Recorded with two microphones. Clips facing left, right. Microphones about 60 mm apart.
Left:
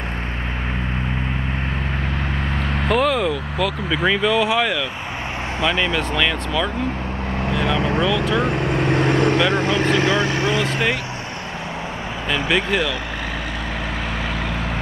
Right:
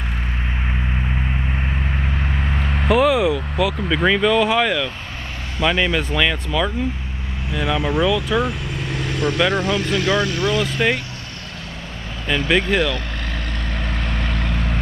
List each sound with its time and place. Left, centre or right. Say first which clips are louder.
2.5 s vehicle: right 2 dB; centre
5.7 s speech: right 2 dB; centre
8.4 s speech: left 3 dB; left
12.4 s speech: right 2 dB; centre
14.3 s vehicle: left 1 dB; centre